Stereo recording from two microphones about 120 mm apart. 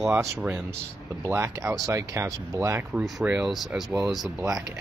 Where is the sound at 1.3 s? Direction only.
25° right (ahead or behind).